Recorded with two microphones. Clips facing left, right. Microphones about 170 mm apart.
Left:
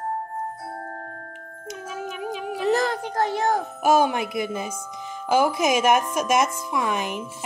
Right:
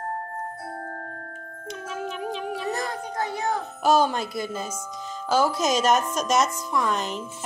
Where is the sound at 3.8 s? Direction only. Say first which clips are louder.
Even; 10° left (ahead or behind).